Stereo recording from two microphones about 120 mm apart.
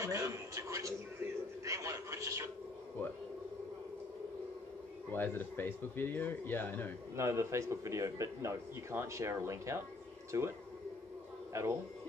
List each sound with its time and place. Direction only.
0.0 s a man's voice: 25° right (ahead or behind)
5.1 s speech: 15° left (ahead or behind)
7.2 s a man's voice: 25° right (ahead or behind)
11.5 s a man's voice: 25° right (ahead or behind)